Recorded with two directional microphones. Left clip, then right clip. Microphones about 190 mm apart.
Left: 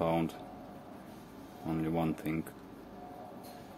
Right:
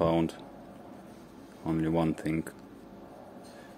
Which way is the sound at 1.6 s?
30° right (ahead or behind).